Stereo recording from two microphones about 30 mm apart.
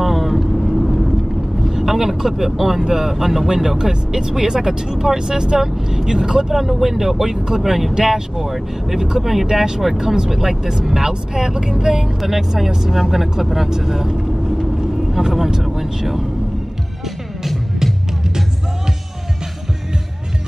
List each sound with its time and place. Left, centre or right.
0.0 s vehicle: centre
2.5 s speech: centre
2.8 s speech: centre
6.5 s speech: centre
8.9 s speech: centre
12.2 s speech: centre
14.1 s vehicle: right
15.0 s speech: centre